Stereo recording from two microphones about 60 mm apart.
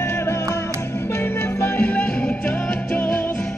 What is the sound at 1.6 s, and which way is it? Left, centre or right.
Music, left.